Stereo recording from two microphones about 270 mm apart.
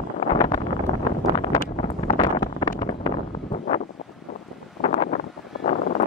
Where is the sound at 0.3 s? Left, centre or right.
Centre.